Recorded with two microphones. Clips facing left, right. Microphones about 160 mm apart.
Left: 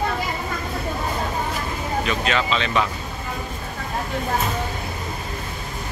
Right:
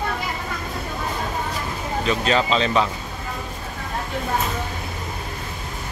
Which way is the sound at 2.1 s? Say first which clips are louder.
Right 4 dB; 35° right (ahead or behind).